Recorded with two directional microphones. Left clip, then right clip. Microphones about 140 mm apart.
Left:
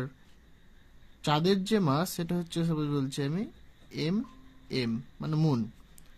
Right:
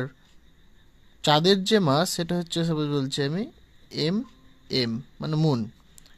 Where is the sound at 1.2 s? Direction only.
25° right (ahead or behind).